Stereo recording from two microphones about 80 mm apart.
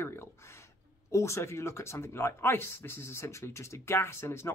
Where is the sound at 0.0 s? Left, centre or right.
Left.